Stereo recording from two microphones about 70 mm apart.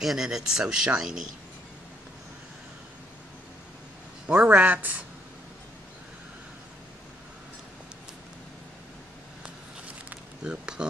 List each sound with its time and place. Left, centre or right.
0.0 s speech: centre
4.5 s speech: right
10.0 s a sound: centre